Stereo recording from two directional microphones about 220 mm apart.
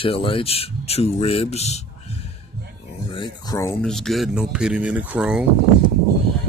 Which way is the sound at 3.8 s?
Centre (ahead or behind).